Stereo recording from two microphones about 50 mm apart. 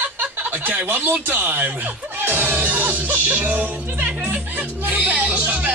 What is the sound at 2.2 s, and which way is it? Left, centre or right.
Music, right.